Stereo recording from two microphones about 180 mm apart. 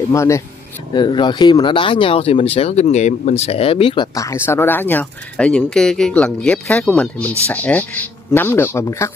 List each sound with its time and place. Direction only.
0.1 s speech: 15° left (ahead or behind)